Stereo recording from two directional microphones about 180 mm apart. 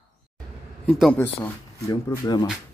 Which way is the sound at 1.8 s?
20° left (ahead or behind).